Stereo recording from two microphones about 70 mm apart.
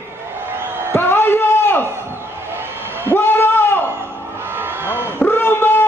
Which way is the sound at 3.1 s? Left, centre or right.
Left.